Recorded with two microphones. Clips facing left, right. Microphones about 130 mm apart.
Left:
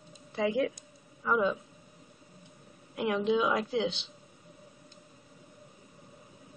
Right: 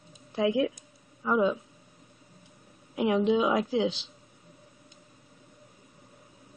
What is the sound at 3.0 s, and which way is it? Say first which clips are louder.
Speech: right 5 dB; 5° right (ahead or behind).